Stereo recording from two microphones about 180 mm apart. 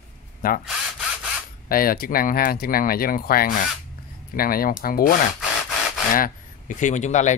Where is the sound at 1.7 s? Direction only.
55° left (ahead or behind).